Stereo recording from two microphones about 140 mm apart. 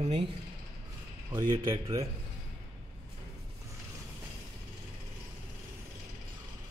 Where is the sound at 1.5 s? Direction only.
35° right (ahead or behind).